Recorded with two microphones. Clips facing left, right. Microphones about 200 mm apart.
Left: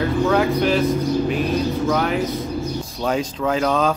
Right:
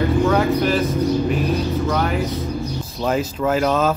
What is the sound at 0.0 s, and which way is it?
Speech, centre (ahead or behind).